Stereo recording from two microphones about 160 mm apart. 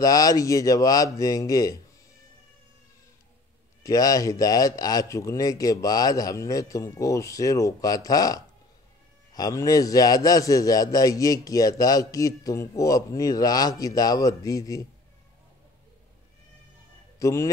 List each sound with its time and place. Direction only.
0.0 s a man's voice: 20° left (ahead or behind)
3.8 s a man's voice: 20° left (ahead or behind)
17.2 s a man's voice: 20° left (ahead or behind)